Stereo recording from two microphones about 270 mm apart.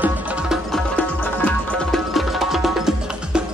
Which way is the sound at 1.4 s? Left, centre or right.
Centre.